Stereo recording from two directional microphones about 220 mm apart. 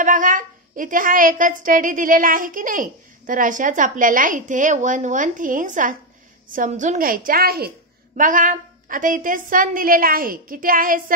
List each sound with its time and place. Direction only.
0.0 s a woman's voice: 35° right (ahead or behind)